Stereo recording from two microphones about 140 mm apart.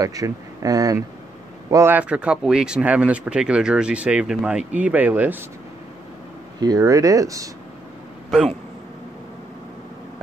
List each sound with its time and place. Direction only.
0.0 s speech: 25° right (ahead or behind)
6.6 s speech: 25° right (ahead or behind)
8.3 s speech: 5° right (ahead or behind)